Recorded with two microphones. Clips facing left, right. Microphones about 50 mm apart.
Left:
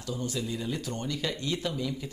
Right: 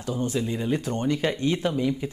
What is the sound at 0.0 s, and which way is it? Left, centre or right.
Speech, right.